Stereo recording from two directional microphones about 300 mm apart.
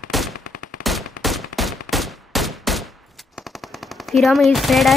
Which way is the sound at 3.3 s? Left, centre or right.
Centre.